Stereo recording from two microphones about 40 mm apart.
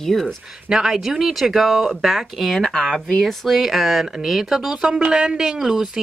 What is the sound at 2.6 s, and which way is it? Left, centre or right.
Speech, centre.